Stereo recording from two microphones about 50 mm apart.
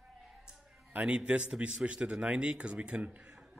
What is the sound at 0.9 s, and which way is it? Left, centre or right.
Speech, right.